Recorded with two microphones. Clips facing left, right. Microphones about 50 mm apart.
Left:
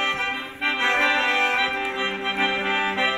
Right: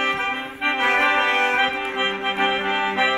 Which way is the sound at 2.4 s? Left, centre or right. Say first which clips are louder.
Right 2 dB; right.